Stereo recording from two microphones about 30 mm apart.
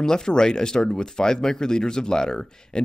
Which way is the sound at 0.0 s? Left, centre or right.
Left.